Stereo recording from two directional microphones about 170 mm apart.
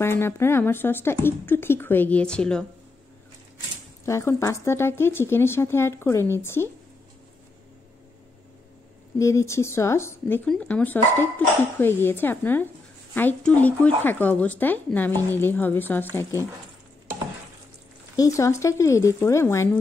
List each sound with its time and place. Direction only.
0.0 s speech: 15° left (ahead or behind)
4.0 s speech: 15° left (ahead or behind)
9.2 s speech: 15° left (ahead or behind)
18.1 s speech: 20° left (ahead or behind)